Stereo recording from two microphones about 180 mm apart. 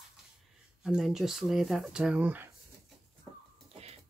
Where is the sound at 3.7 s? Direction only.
35° right (ahead or behind).